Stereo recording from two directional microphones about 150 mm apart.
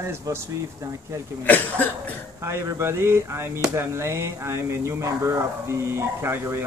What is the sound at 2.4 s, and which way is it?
Speech, 20° right (ahead or behind).